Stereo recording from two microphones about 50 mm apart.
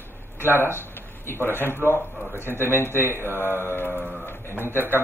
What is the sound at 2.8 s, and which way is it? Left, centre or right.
Speech, left.